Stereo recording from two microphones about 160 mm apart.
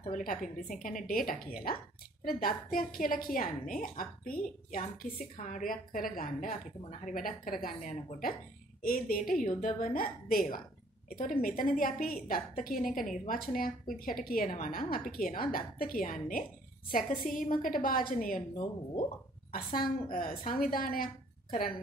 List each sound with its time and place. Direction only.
0.1 s a woman's voice: 55° left (ahead or behind)
19.5 s a woman's voice: 65° left (ahead or behind)